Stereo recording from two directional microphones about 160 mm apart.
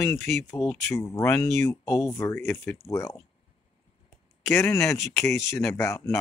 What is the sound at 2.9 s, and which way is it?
Speech, 20° left (ahead or behind).